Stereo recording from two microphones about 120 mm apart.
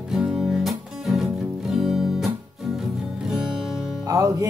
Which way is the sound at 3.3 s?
5° right (ahead or behind).